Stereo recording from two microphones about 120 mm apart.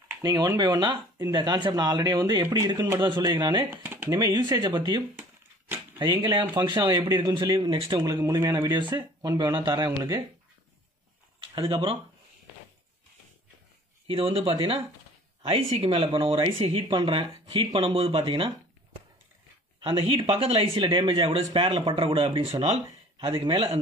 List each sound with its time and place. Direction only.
0.2 s speech: 35° right (ahead or behind)
3.7 s a sound: 20° right (ahead or behind)
4.2 s speech: 40° right (ahead or behind)
8.0 s speech: 25° right (ahead or behind)
11.3 s speech: 40° right (ahead or behind)
14.0 s speech: 50° right (ahead or behind)
18.1 s speech: 40° right (ahead or behind)
19.9 s speech: 50° right (ahead or behind)